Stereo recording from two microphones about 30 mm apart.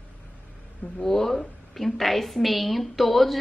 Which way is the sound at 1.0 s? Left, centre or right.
Centre.